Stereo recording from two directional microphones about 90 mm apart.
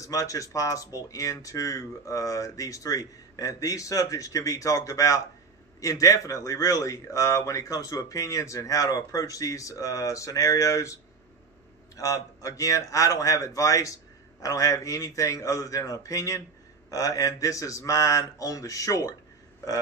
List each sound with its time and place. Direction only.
0.0 s speech: 40° left (ahead or behind)
12.0 s speech: 40° left (ahead or behind)